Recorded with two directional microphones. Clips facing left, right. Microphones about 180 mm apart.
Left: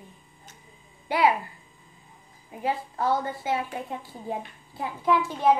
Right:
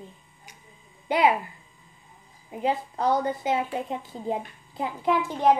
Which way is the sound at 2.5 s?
20° right (ahead or behind).